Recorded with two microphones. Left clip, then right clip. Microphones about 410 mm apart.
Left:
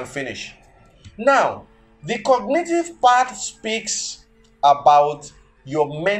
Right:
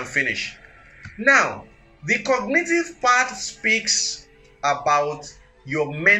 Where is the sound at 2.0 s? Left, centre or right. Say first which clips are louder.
Left 3 dB; left.